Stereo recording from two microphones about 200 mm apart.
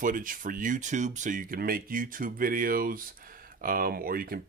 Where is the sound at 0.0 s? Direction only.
40° right (ahead or behind).